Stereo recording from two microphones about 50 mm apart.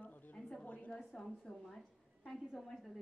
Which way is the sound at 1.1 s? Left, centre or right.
Centre.